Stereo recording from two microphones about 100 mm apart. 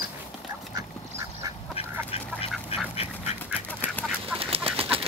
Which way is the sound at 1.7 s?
75° left (ahead or behind).